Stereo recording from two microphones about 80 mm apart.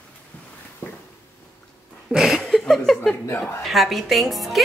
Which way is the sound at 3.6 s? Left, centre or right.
Centre.